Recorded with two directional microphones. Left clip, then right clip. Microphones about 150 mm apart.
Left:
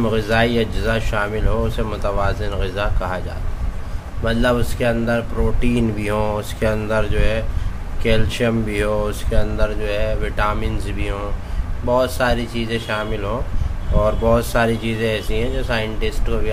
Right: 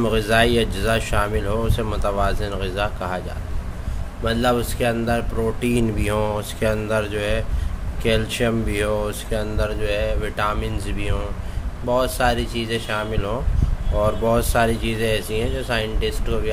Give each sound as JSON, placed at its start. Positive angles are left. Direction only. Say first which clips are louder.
{"t": 0.0, "sound": "speech", "louder": "even", "side_deg": -20}
{"t": 4.2, "sound": "speech", "louder": "left 1 dB", "side_deg": -15}